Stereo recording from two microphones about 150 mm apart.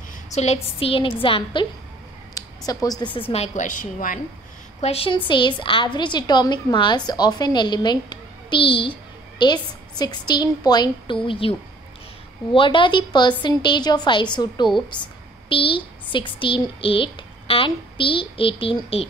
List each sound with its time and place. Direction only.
0.3 s speech: 45° left (ahead or behind)
2.3 s a sound: 25° left (ahead or behind)
3.2 s a woman's voice: 40° left (ahead or behind); by 4.2 s 65° left (ahead or behind)
4.8 s a woman's voice: 40° left (ahead or behind)
12.5 s a woman's voice: 35° left (ahead or behind)